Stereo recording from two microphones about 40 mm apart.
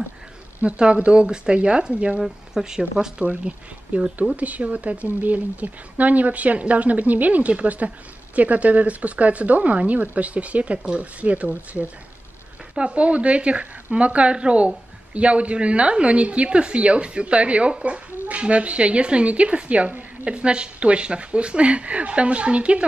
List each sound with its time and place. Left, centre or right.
0.7 s speech: right
2.1 s speech: centre
3.3 s speech: right
4.4 s speech: right
20.2 s speech: right